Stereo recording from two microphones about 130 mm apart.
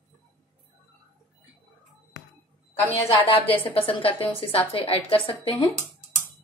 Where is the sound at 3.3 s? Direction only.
45° left (ahead or behind).